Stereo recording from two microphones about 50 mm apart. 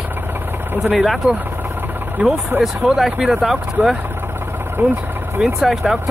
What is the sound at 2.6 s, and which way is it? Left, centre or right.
Speech, centre.